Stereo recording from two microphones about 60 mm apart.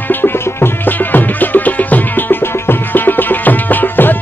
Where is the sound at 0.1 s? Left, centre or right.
Left.